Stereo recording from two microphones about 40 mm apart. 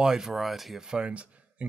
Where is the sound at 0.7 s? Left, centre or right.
Centre.